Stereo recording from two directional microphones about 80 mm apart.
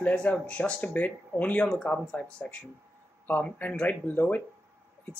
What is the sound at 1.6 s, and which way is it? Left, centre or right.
Speech, centre.